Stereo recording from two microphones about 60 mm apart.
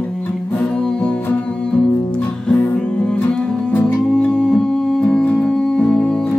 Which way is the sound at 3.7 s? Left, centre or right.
Centre.